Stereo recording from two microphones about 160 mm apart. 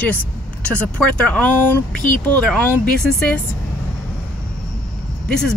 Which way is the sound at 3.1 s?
5° left (ahead or behind).